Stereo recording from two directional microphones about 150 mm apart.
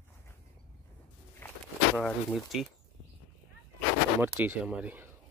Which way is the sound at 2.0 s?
Centre (ahead or behind).